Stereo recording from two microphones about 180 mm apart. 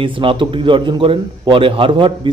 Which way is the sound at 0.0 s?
30° right (ahead or behind).